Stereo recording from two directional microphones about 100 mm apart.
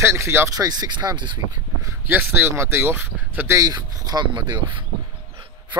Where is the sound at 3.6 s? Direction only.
40° right (ahead or behind).